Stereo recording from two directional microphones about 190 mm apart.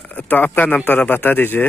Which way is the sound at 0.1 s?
10° left (ahead or behind).